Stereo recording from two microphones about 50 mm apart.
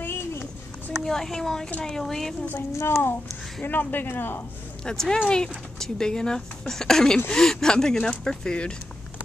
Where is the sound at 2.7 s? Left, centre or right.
Left.